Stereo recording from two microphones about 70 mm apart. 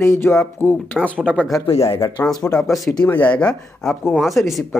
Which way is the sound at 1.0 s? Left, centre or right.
Centre.